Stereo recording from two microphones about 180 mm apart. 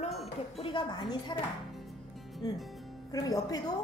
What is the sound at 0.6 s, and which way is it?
Speech, 25° left (ahead or behind).